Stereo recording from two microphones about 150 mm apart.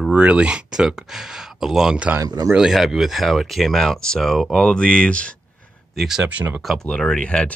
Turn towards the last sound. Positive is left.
turn(degrees=5)  # may be behind; listen again after turning